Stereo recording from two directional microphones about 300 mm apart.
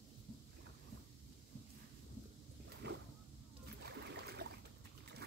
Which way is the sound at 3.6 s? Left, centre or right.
Right.